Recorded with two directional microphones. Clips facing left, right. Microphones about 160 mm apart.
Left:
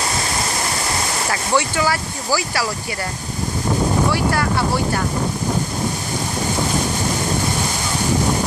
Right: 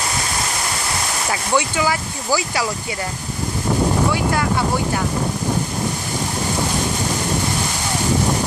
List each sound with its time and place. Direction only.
1.3 s speech: 15° right (ahead or behind)